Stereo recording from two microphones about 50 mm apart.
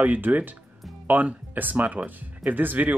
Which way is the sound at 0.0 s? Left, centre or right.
Right.